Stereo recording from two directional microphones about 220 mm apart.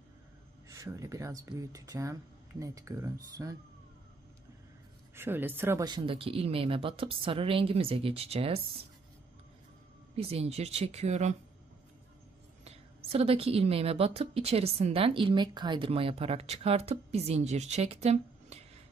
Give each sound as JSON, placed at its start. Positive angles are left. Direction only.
{"t": 0.7, "sound": "speech", "side_deg": -15}
{"t": 5.1, "sound": "a woman's voice", "side_deg": -10}
{"t": 10.1, "sound": "a woman's voice", "side_deg": -25}
{"t": 12.6, "sound": "a woman's voice", "side_deg": -25}